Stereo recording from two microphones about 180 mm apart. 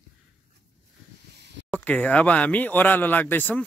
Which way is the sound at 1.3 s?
70° right (ahead or behind).